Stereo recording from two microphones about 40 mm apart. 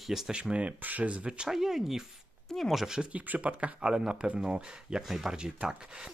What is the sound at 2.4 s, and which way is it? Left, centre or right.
Speech, centre.